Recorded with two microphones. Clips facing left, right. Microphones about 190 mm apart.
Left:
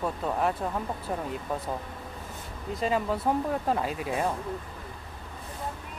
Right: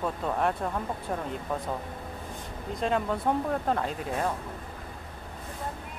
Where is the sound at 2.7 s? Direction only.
5° left (ahead or behind).